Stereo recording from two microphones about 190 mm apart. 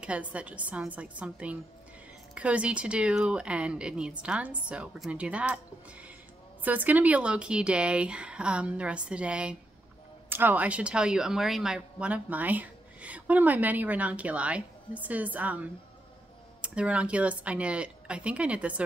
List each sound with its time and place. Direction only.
0.0 s a woman's voice: 5° right (ahead or behind)